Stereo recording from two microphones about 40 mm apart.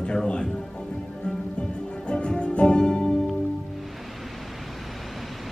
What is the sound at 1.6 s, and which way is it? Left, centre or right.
Music, left.